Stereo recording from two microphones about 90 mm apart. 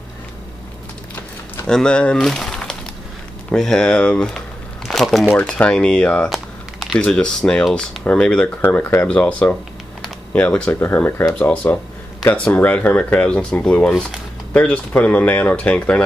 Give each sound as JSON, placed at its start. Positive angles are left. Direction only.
{"t": 1.7, "sound": "speech", "side_deg": 10}
{"t": 5.3, "sound": "speech", "side_deg": 15}
{"t": 6.3, "sound": "a sound", "side_deg": 0}
{"t": 7.1, "sound": "speech", "side_deg": 5}
{"t": 8.5, "sound": "speech", "side_deg": 20}
{"t": 11.5, "sound": "speech", "side_deg": 15}